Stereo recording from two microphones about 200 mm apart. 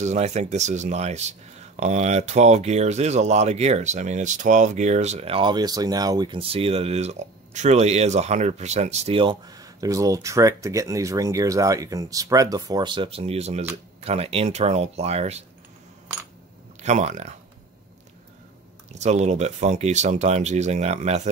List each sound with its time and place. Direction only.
0.0 s speech: 35° right (ahead or behind)
16.8 s speech: 35° right (ahead or behind)
18.9 s speech: 35° right (ahead or behind)